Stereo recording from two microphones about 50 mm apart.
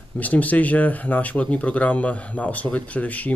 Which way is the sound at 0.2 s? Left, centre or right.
Left.